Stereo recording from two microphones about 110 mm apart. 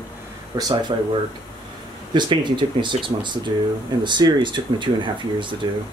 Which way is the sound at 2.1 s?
45° right (ahead or behind).